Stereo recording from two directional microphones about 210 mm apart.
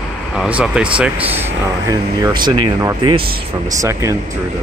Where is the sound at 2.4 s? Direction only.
20° right (ahead or behind).